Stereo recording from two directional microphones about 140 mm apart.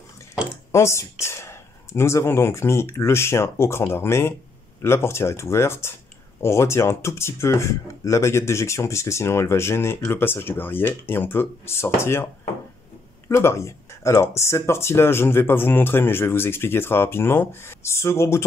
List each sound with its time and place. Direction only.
0.7 s speech: 20° left (ahead or behind)
13.3 s speech: 20° left (ahead or behind)